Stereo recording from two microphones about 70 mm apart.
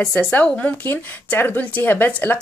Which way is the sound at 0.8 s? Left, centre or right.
Left.